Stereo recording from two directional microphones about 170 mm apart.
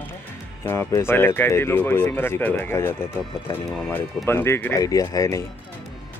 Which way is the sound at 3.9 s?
15° left (ahead or behind).